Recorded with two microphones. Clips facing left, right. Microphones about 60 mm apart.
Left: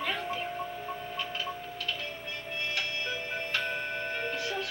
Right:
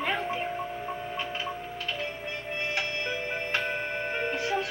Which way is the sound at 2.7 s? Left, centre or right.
Right.